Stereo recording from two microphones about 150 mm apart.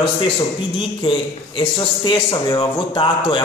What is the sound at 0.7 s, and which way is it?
Speech, 35° left (ahead or behind).